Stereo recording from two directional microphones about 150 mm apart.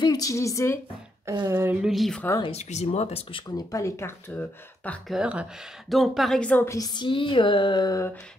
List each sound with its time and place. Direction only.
0.0 s a woman's voice: 25° left (ahead or behind)
1.5 s a sound: 15° right (ahead or behind)
1.8 s speech: centre (ahead or behind)
2.4 s speech: 45° left (ahead or behind); by 4.9 s 15° left (ahead or behind)
5.0 s a woman's voice: 5° right (ahead or behind); by 8.1 s 25° left (ahead or behind)